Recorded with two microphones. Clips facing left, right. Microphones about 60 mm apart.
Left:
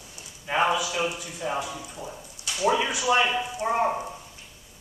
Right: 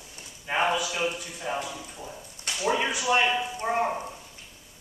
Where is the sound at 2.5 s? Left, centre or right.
Right.